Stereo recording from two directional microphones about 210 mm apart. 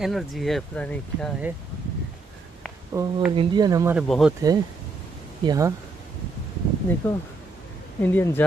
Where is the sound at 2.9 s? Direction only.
15° right (ahead or behind).